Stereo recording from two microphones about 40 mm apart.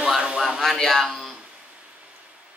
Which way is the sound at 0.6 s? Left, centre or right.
Centre.